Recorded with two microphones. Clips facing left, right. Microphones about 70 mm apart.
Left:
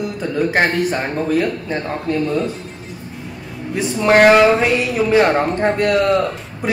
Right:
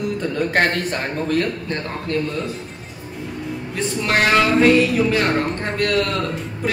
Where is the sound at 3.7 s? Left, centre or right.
Left.